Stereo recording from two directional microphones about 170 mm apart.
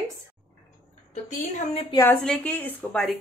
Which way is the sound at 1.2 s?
45° left (ahead or behind).